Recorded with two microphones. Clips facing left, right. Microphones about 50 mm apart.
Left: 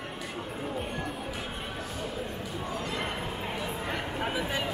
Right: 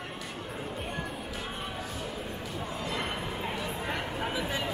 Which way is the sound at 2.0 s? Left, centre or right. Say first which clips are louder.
Left 2 dB; centre.